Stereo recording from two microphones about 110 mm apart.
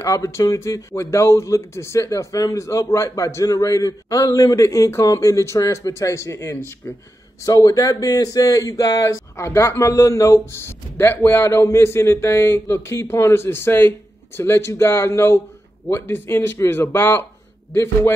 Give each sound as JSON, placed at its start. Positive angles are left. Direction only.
{"t": 0.0, "sound": "speech", "side_deg": 25}